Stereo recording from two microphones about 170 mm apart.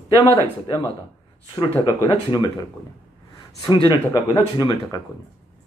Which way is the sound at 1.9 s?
20° left (ahead or behind).